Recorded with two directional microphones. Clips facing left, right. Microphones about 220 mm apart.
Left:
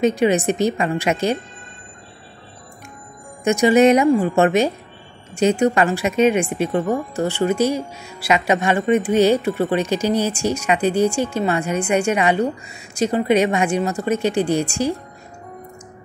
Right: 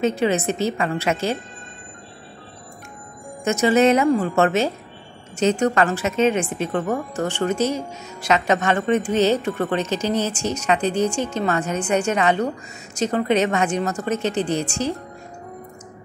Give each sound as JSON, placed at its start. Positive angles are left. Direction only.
{"t": 0.0, "sound": "speech", "side_deg": 15}
{"t": 3.4, "sound": "speech", "side_deg": 15}